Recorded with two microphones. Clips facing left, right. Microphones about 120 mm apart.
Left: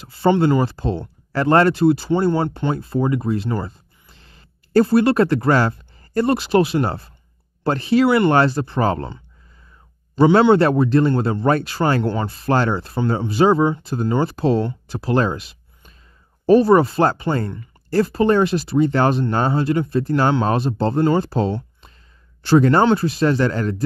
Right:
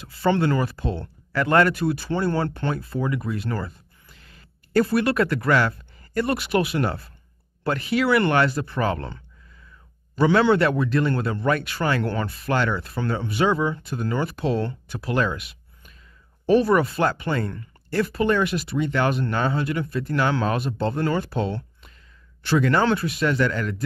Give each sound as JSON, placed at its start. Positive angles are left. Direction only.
{"t": 0.0, "sound": "speech", "side_deg": 25}
{"t": 10.1, "sound": "speech", "side_deg": 25}